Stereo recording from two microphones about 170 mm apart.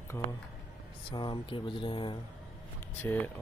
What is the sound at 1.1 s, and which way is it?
Speech, 30° left (ahead or behind).